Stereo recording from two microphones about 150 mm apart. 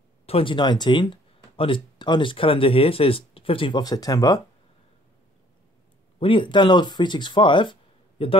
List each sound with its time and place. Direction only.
0.3 s speech: 35° left (ahead or behind)
6.1 s speech: 35° left (ahead or behind)